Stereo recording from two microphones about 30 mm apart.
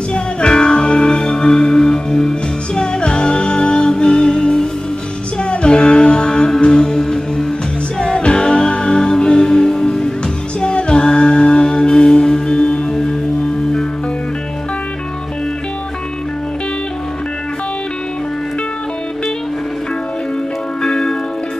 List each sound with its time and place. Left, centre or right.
0.1 s music: left
10.6 s music: left
20.8 s music: left